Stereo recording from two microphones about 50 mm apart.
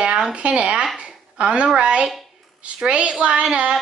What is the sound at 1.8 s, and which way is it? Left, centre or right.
A woman's voice, right.